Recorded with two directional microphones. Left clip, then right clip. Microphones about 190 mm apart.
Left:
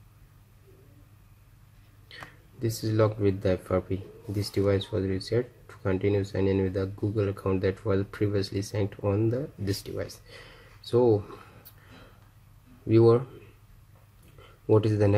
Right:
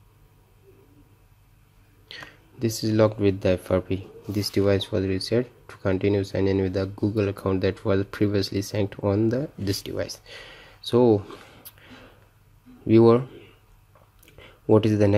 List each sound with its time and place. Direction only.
2.6 s speech: 30° right (ahead or behind)
12.8 s speech: 30° right (ahead or behind)
14.7 s speech: 30° right (ahead or behind)